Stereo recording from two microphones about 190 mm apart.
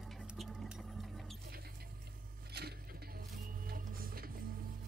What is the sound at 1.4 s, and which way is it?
Water, 55° right (ahead or behind).